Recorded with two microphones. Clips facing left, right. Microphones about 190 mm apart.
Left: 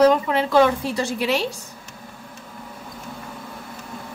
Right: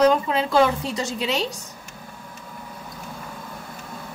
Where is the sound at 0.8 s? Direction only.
25° right (ahead or behind).